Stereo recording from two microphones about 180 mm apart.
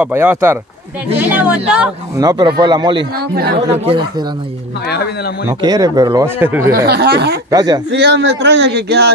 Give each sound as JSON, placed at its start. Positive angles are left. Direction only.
{"t": 0.0, "sound": "speech", "side_deg": -10}
{"t": 2.1, "sound": "speech", "side_deg": -20}
{"t": 3.3, "sound": "speech", "side_deg": -60}
{"t": 3.7, "sound": "speech", "side_deg": -30}
{"t": 5.5, "sound": "speech", "side_deg": -20}
{"t": 6.6, "sound": "speech", "side_deg": -55}
{"t": 7.5, "sound": "speech", "side_deg": -20}
{"t": 8.0, "sound": "a man's voice", "side_deg": -75}